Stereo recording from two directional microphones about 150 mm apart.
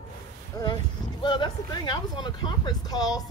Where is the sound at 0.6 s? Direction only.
25° left (ahead or behind).